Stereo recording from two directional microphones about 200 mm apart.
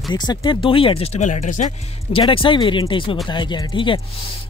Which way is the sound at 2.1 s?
25° left (ahead or behind).